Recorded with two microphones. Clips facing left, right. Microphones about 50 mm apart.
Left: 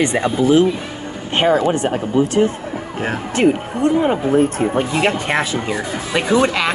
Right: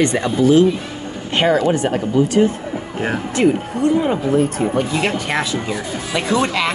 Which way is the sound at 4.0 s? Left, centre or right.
Left.